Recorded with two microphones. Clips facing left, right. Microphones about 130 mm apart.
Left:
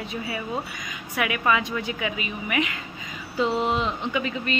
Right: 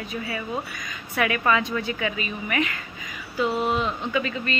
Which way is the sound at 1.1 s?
10° left (ahead or behind).